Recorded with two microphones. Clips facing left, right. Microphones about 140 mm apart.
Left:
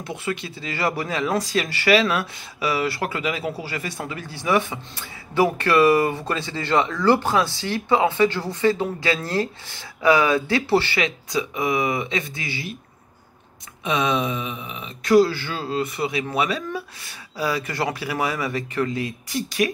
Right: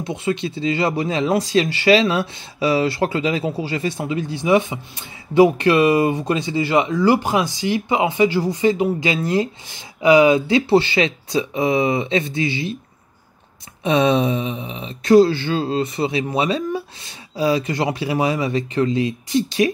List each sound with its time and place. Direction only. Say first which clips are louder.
0.0 s speech: right 6 dB; 20° right (ahead or behind)
13.8 s speech: right 6 dB; 30° right (ahead or behind)